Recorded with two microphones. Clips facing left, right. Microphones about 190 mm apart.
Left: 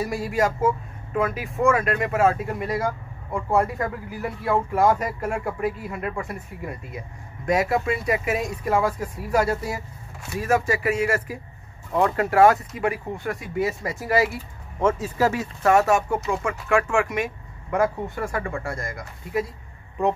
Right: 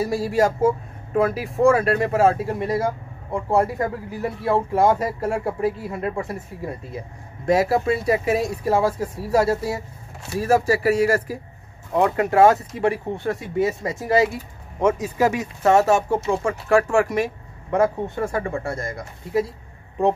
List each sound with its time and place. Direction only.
0.0 s speech: 30° right (ahead or behind)
11.9 s speech: 20° right (ahead or behind)